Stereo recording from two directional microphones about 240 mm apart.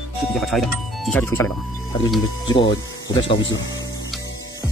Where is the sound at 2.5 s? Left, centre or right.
Centre.